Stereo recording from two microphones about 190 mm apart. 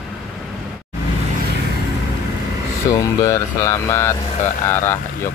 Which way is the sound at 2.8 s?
15° left (ahead or behind).